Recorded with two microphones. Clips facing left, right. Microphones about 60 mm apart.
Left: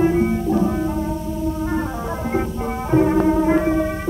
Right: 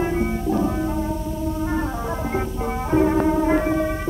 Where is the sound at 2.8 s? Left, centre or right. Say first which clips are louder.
Left 2 dB; centre.